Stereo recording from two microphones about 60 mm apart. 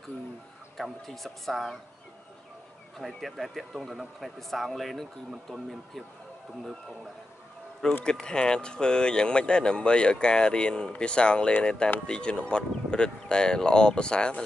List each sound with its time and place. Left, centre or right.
0.7 s speech: centre
3.1 s speech: centre
8.0 s speech: centre